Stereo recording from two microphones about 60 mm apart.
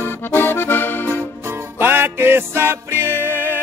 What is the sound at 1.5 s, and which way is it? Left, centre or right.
Music, right.